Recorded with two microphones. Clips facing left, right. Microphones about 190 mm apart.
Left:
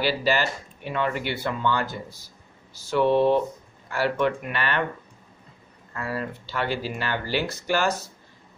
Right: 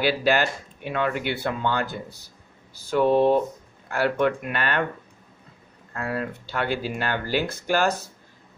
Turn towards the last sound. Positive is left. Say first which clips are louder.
# right 1 dB
turn(degrees=-55)  # may be behind; listen again after turning